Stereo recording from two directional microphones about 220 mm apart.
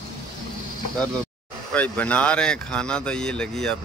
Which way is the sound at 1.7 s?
5° left (ahead or behind).